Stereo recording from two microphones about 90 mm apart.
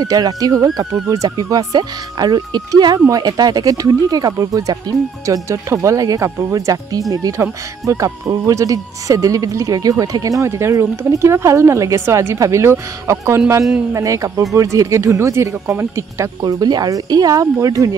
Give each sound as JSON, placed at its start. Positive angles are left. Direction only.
{"t": 0.0, "sound": "speech", "side_deg": -45}
{"t": 16.4, "sound": "speech", "side_deg": -45}